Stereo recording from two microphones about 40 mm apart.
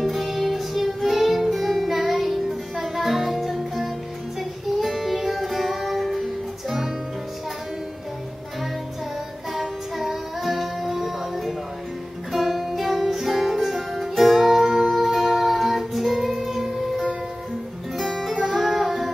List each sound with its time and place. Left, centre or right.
0.0 s music: centre
9.5 s music: centre
17.9 s music: centre